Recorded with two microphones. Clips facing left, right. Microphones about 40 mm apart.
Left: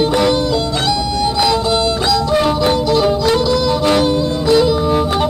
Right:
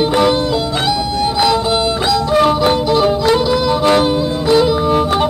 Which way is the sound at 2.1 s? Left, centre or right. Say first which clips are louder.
Right 3 dB; centre.